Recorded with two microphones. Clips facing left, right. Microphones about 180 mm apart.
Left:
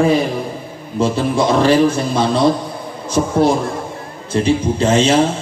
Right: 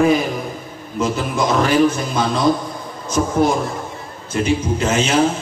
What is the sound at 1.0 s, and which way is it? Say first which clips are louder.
A man's voice: left 4 dB; 30° left (ahead or behind).